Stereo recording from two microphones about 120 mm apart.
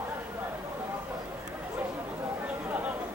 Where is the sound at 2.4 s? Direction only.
10° right (ahead or behind).